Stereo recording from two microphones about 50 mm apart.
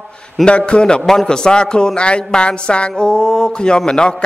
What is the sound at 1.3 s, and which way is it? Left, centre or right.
A man's voice, centre.